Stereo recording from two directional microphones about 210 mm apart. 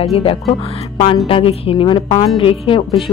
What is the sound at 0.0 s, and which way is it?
Speech, 25° left (ahead or behind).